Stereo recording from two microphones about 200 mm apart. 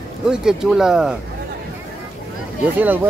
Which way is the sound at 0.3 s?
5° right (ahead or behind).